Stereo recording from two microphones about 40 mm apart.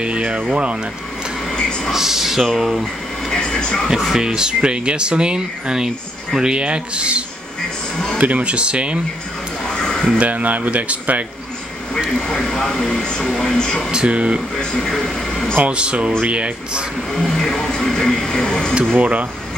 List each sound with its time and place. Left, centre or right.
0.0 s speech: right
1.5 s a sound: left
1.9 s speech: centre
2.8 s speech: centre
3.9 s speech: centre; by 9.0 s right
9.8 s a sound: centre
10.1 s speech: right
12.3 s speech: centre
13.9 s speech: right
14.6 s speech: centre
15.6 s speech: right
17.1 s speech: centre
18.9 s speech: right